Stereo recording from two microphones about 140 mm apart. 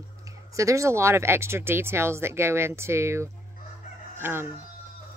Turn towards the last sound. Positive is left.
turn(degrees=-15)  # may be behind; listen again after turning